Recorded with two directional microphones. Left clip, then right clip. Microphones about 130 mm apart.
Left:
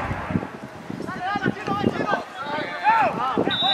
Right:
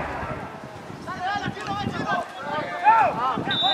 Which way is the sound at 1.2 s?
10° right (ahead or behind).